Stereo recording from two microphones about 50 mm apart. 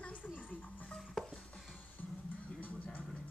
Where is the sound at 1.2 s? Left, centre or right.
Centre.